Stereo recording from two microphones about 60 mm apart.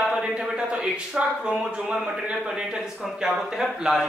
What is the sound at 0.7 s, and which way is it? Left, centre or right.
Speech, centre.